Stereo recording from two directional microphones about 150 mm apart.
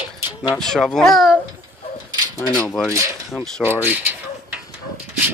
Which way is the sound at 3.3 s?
Centre (ahead or behind).